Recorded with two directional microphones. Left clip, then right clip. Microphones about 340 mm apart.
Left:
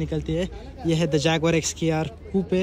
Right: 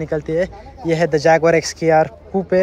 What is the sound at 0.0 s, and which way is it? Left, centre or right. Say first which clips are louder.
Speech: right 8 dB; centre.